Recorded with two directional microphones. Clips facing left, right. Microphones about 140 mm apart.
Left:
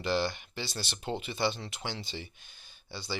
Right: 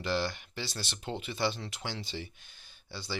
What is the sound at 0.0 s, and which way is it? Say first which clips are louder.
Speech: left 2 dB; 25° left (ahead or behind).